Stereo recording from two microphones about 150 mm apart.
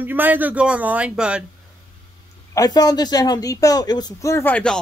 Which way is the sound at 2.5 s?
25° left (ahead or behind).